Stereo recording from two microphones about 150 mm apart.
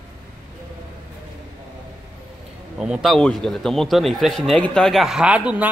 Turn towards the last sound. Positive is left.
turn(degrees=-10)  # may be behind; listen again after turning